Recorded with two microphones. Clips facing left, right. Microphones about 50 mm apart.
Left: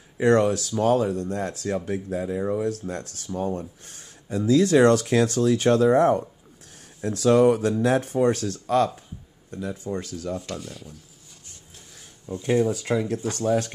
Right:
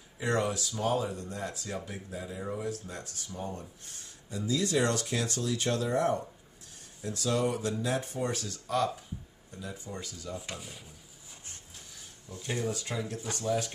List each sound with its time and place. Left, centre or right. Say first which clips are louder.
0.2 s speech: left 11 dB; left
7.0 s speech: left 12 dB; left
7.5 s speech: left 9 dB; left
7.8 s speech: left 11 dB; left
10.4 s speech: left 8 dB; centre
12.3 s speech: left 12 dB; left
13.3 s speech: left 7 dB; left